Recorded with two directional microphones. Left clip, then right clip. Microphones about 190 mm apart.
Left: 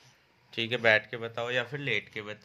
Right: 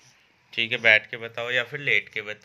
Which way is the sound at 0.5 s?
30° left (ahead or behind).